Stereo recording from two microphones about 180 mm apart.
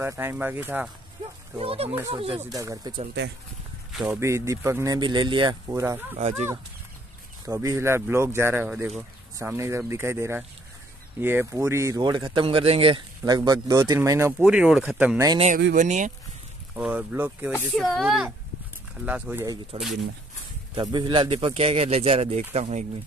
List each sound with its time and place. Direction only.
0.0 s speech: 15° right (ahead or behind)
1.6 s speech: 30° right (ahead or behind)
2.5 s speech: 20° right (ahead or behind)
3.9 s speech: 10° right (ahead or behind); by 5.6 s 25° right (ahead or behind)
5.7 s speech: 15° right (ahead or behind)
7.4 s speech: 15° right (ahead or behind)
13.2 s speech: 20° right (ahead or behind)
15.7 s speech: 45° right (ahead or behind)
16.7 s speech: 10° right (ahead or behind)
17.7 s speech: centre (ahead or behind)
19.4 s speech: 20° right (ahead or behind)
19.8 s speech: centre (ahead or behind)
20.7 s speech: 25° right (ahead or behind)